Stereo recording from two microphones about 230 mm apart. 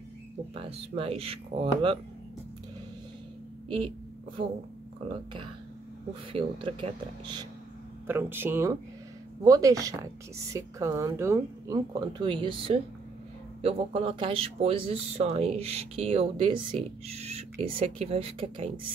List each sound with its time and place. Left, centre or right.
0.7 s speech: right
3.6 s speech: right
5.0 s speech: right
8.1 s a woman's voice: centre; by 18.7 s right